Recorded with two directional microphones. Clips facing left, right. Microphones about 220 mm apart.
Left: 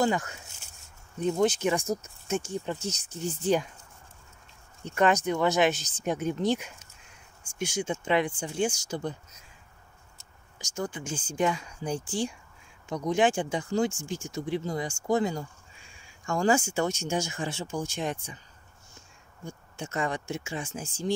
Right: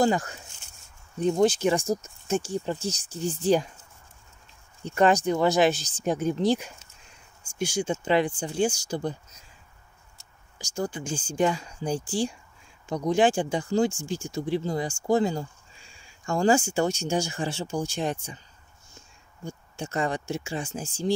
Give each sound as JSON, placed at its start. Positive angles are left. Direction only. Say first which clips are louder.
{"t": 0.0, "sound": "speech", "louder": "right 3 dB", "side_deg": -35}
{"t": 4.8, "sound": "speech", "louder": "right 3 dB", "side_deg": -35}
{"t": 10.6, "sound": "speech", "louder": "right 3 dB", "side_deg": -30}
{"t": 19.4, "sound": "speech", "louder": "right 3 dB", "side_deg": -35}